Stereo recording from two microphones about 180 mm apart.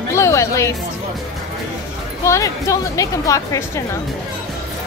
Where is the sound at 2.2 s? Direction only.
15° left (ahead or behind).